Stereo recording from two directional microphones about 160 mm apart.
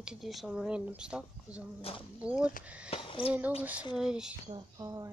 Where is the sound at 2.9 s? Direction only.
35° left (ahead or behind).